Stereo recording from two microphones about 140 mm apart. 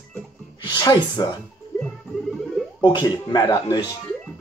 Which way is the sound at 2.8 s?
35° left (ahead or behind).